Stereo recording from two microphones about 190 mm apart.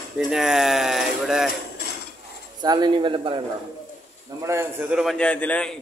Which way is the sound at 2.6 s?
20° right (ahead or behind).